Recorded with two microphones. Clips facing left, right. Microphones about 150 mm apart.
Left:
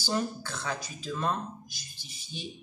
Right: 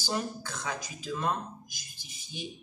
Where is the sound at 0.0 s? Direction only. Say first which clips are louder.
Left 2 dB; 10° right (ahead or behind).